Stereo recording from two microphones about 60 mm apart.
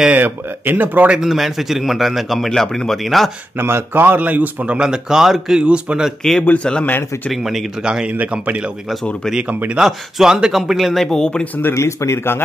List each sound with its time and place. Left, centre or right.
0.1 s speech: right
1.1 s a man's voice: centre
3.5 s a man's voice: right
4.7 s speech: centre
6.6 s speech: centre
7.2 s a man's voice: centre
7.8 s speech: centre
9.8 s a man's voice: centre
11.7 s speech: left